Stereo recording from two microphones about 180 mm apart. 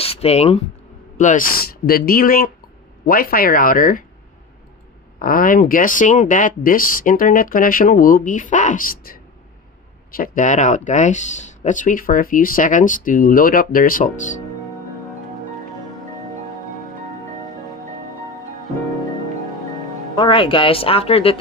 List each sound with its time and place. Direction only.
0.0 s speech: 35° left (ahead or behind)
1.9 s speech: 55° left (ahead or behind)
5.2 s speech: 50° left (ahead or behind)
10.1 s speech: 50° left (ahead or behind)
20.2 s speech: 25° left (ahead or behind)